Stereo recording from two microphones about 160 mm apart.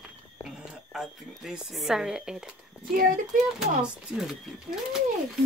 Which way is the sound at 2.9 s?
60° right (ahead or behind).